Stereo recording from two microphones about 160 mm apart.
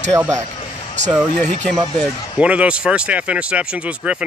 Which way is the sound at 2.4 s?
5° right (ahead or behind).